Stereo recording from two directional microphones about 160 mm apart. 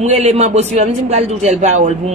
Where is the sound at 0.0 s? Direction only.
45° right (ahead or behind).